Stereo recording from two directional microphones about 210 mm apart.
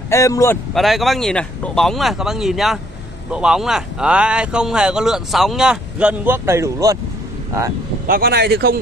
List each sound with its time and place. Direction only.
0.1 s speech: 15° left (ahead or behind)
0.7 s speech: centre (ahead or behind); by 7.0 s 15° right (ahead or behind)
8.1 s speech: 50° right (ahead or behind)